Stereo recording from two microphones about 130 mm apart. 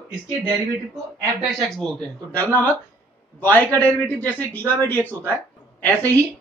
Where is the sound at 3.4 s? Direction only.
15° left (ahead or behind).